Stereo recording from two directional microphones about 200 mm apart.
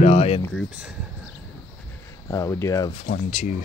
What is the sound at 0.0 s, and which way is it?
Speech, 30° left (ahead or behind).